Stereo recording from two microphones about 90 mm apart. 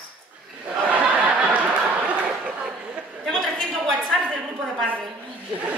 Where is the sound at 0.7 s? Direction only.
15° right (ahead or behind).